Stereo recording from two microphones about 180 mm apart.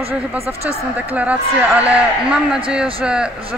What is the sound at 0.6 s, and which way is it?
A man's voice, 10° right (ahead or behind).